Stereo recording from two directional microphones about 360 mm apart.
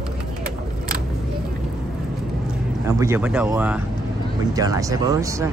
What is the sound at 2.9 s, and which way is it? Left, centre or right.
Speech, centre.